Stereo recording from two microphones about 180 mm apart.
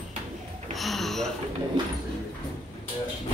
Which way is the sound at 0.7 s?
Centre (ahead or behind).